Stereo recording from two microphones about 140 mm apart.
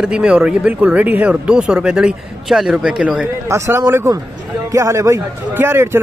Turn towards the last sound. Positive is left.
turn(degrees=-15)  # may be behind; listen again after turning